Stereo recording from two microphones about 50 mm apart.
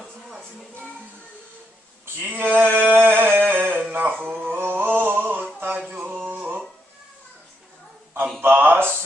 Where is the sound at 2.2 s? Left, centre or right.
Right.